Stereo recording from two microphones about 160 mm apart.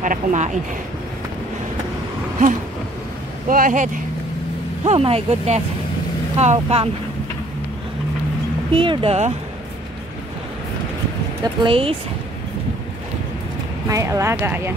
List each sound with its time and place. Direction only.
0.0 s speech: 50° right (ahead or behind)
3.4 s speech: 60° right (ahead or behind)
4.8 s speech: 35° right (ahead or behind)
8.7 s speech: 35° right (ahead or behind)
11.4 s speech: 35° right (ahead or behind)
13.8 s speech: 20° right (ahead or behind)